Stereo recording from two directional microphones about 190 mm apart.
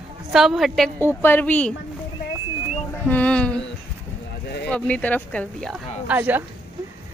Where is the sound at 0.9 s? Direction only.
10° left (ahead or behind).